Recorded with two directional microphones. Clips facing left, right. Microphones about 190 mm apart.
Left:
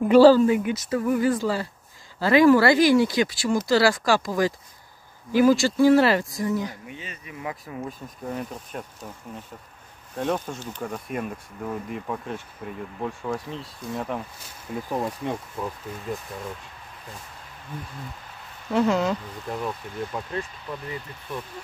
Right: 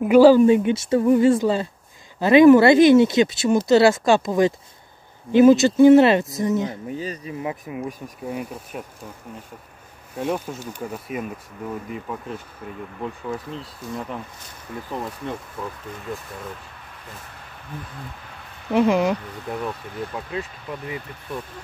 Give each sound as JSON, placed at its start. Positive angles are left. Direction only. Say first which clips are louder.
{"t": 0.0, "sound": "speech", "louder": "right 2 dB", "side_deg": -10}
{"t": 0.5, "sound": "speech", "louder": "right 6 dB", "side_deg": -25}
{"t": 6.9, "sound": "speech", "louder": "right 10 dB", "side_deg": -35}
{"t": 8.3, "sound": "speech", "louder": "right 2 dB", "side_deg": -10}
{"t": 10.1, "sound": "speech", "louder": "right 1 dB", "side_deg": -10}
{"t": 18.7, "sound": "speech", "louder": "right 3 dB", "side_deg": -20}